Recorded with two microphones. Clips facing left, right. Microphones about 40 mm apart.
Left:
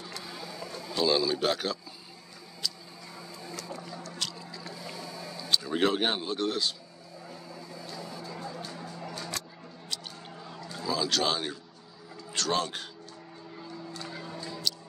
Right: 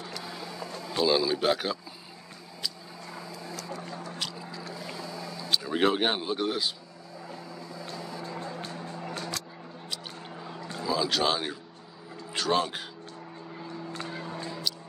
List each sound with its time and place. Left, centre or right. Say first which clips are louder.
0.4 s vehicle: right 2 dB; right
1.0 s a man's voice: right 2 dB; centre
3.2 s a sound: right 1 dB; right
4.2 s boat: right 1 dB; centre
4.6 s boat: right 2 dB; right
5.5 s speech: right 1 dB; centre
7.8 s music: right 3 dB; right
10.8 s speech: right 2 dB; centre
13.9 s a sound: right 4 dB; right